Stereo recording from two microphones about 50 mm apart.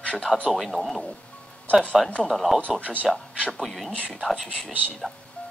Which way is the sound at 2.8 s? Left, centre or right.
Right.